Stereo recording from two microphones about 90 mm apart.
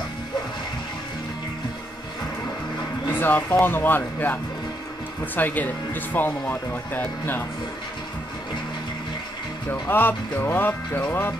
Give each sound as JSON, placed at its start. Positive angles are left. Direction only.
{"t": 3.1, "sound": "speech", "side_deg": 25}
{"t": 9.7, "sound": "speech", "side_deg": 20}